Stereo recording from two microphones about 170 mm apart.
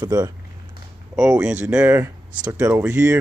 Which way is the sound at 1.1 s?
5° right (ahead or behind).